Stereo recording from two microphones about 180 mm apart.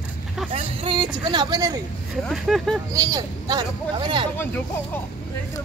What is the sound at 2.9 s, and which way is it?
Speech, 20° right (ahead or behind).